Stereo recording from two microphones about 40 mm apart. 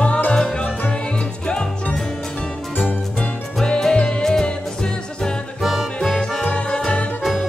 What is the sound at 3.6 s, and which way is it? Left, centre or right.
Music, centre.